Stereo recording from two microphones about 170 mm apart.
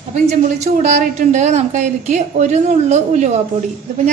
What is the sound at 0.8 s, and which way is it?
A woman's voice, 50° right (ahead or behind).